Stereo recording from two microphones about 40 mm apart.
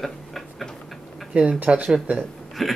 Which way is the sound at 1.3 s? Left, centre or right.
Right.